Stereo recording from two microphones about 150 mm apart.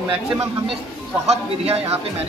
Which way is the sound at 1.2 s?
45° right (ahead or behind).